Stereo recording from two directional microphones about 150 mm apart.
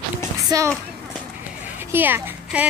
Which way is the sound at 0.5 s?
25° right (ahead or behind).